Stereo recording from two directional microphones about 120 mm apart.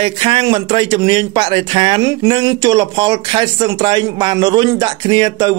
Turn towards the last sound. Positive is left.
turn(degrees=-40)  # may be behind; listen again after turning